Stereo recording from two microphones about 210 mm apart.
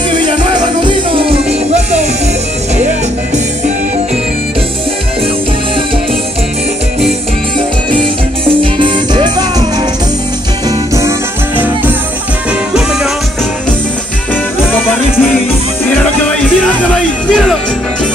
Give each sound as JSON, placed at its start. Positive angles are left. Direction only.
{"t": 0.2, "sound": "music", "side_deg": -20}
{"t": 8.5, "sound": "music", "side_deg": -25}
{"t": 11.0, "sound": "music", "side_deg": -10}
{"t": 14.7, "sound": "music", "side_deg": 10}